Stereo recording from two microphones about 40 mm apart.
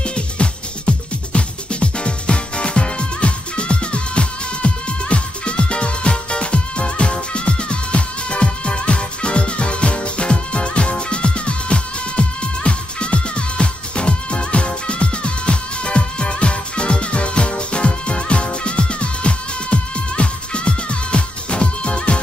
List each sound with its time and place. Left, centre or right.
0.0 s music: left